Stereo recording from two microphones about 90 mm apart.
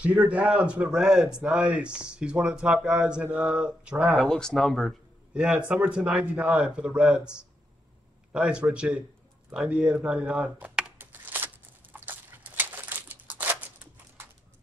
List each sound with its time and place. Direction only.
0.0 s a man's voice: 15° right (ahead or behind)
4.2 s speech: 5° left (ahead or behind)
5.3 s a man's voice: 10° right (ahead or behind)
9.5 s a sound: 10° right (ahead or behind)